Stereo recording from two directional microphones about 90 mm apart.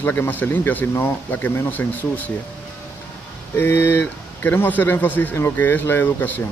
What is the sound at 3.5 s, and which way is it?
A man's voice, 25° left (ahead or behind).